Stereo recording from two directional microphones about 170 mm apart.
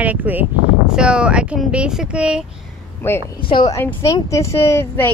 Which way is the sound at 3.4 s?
30° left (ahead or behind).